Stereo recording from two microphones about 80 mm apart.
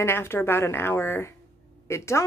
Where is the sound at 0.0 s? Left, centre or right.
Left.